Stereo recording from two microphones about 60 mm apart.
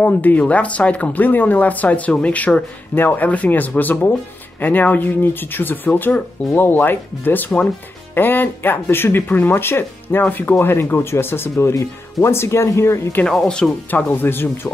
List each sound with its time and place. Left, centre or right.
0.0 s speech: left
13.8 s speech: left